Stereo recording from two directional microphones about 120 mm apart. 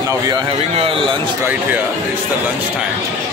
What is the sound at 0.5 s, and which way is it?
Speech, 55° right (ahead or behind).